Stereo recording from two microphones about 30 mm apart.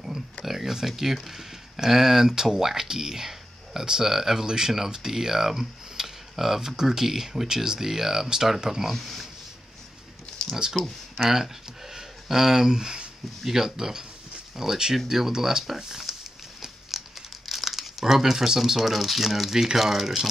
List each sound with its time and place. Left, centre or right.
0.5 s speech: centre
9.0 s speech: centre
10.5 s speech: centre
13.4 s speech: centre
16.9 s crumpling: centre
18.8 s speech: centre